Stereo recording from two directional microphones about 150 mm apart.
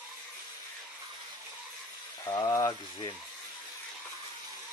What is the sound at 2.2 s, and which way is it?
Speech, 20° left (ahead or behind).